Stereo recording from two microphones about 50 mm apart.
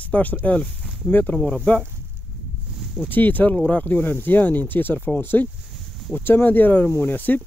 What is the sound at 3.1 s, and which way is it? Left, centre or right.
Speech, left.